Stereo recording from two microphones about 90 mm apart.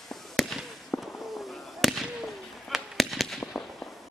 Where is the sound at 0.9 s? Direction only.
20° left (ahead or behind).